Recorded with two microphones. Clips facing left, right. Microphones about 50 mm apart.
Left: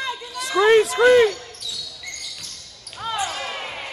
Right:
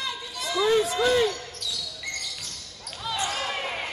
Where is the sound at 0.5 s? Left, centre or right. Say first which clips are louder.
Left 7 dB; left.